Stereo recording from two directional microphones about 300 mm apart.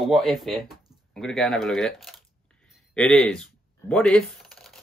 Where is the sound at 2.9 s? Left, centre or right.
Centre.